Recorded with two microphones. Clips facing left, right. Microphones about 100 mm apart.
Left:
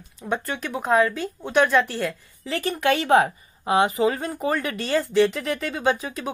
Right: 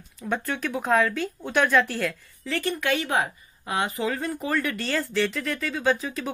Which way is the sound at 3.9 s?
20° left (ahead or behind).